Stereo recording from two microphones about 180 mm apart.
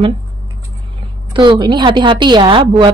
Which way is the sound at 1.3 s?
25° right (ahead or behind).